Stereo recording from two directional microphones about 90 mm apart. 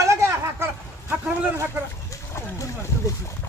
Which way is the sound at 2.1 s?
35° left (ahead or behind).